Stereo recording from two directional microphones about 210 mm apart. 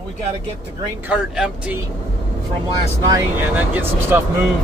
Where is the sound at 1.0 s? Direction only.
5° right (ahead or behind).